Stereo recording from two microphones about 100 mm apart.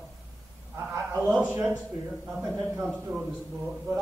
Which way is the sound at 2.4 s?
35° right (ahead or behind).